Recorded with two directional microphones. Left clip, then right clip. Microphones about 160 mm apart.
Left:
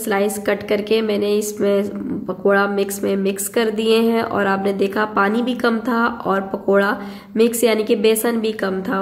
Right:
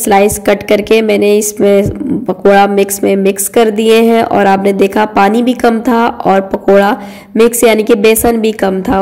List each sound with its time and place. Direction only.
0.0 s a woman's voice: 40° right (ahead or behind)